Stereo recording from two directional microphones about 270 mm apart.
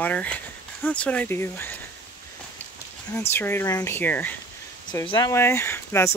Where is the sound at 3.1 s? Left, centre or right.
Centre.